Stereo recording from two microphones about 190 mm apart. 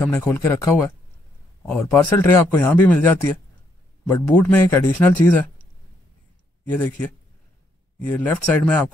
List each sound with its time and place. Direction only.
0.0 s speech: 10° left (ahead or behind)
6.6 s speech: 10° left (ahead or behind)